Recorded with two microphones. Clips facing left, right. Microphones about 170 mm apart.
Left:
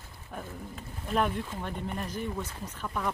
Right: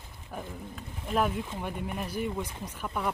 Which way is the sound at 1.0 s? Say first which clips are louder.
Even; 5° right (ahead or behind).